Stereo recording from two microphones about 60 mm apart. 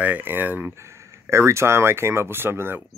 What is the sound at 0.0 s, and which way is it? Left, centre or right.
Speech, right.